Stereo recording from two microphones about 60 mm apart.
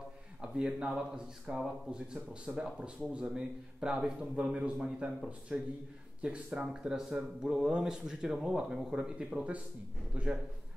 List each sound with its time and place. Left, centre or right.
0.4 s a man's voice: centre